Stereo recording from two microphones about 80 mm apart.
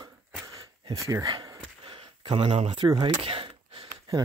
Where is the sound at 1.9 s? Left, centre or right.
Right.